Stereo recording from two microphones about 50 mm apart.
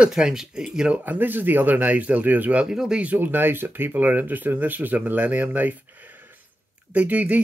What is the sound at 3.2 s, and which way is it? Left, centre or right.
Speech, right.